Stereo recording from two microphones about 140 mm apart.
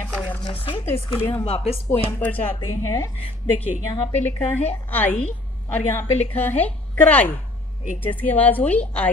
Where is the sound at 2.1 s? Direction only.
10° left (ahead or behind).